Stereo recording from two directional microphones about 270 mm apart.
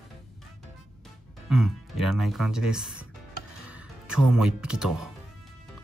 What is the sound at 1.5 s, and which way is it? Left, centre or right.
Speech, centre.